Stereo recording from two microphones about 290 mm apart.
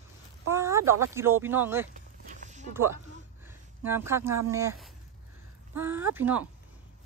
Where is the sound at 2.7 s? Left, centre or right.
Centre.